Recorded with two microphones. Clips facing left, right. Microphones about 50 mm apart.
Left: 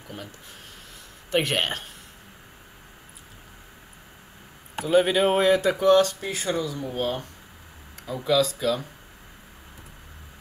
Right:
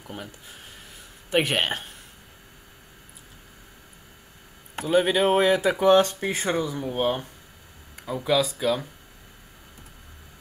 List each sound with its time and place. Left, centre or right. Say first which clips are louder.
1.3 s speech: right 1 dB; centre
4.7 s a man's voice: left 1 dB; centre
5.9 s speech: even; right
6.2 s speech: right 3 dB; right
6.5 s speech: right 1 dB; right